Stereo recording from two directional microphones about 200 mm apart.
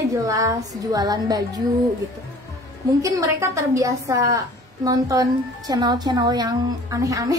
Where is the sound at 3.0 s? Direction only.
15° right (ahead or behind).